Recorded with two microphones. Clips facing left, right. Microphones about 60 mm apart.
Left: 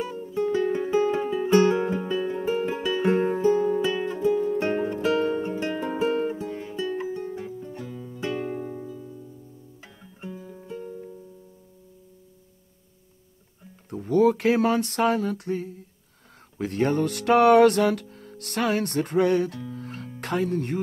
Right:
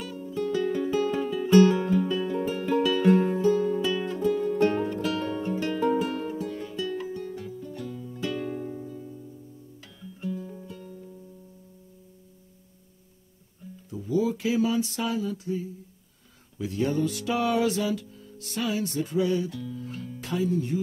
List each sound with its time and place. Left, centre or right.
0.0 s music: left
10.0 s music: left
13.8 s a sound: left
16.5 s music: left
20.2 s speech: left